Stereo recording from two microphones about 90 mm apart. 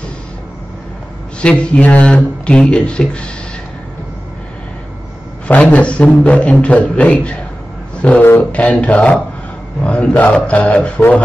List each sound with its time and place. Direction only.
1.4 s speech: 15° left (ahead or behind)
5.5 s speech: 15° left (ahead or behind)
8.0 s a sound: 15° left (ahead or behind)
8.3 s a man's voice: 15° left (ahead or behind)